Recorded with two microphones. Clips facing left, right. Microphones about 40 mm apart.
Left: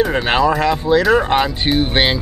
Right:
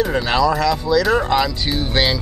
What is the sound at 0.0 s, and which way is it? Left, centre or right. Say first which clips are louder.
Speech: left 2 dB; left.